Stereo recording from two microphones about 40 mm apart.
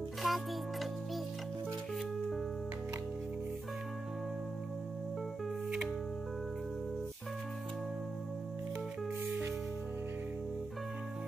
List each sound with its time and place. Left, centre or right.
0.2 s music: centre